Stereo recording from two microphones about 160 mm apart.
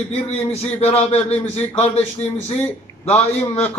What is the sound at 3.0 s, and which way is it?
Speech, 40° left (ahead or behind).